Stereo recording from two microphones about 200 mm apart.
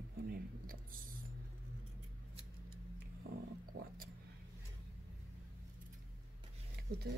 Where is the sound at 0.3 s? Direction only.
45° right (ahead or behind).